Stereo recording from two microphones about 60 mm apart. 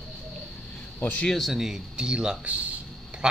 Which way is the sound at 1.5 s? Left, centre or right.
Centre.